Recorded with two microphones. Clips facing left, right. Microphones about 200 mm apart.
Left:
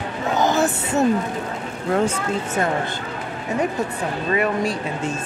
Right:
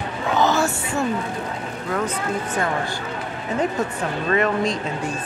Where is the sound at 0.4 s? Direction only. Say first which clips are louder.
Left 1 dB; 20° left (ahead or behind).